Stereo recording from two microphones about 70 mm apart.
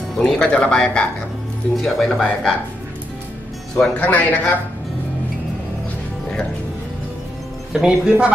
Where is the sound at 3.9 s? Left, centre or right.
Left.